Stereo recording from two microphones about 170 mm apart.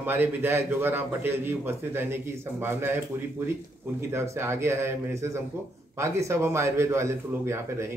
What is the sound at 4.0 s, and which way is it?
Speech, 15° right (ahead or behind).